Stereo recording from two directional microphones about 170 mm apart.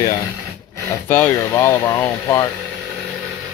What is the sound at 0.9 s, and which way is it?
Speech, 15° left (ahead or behind).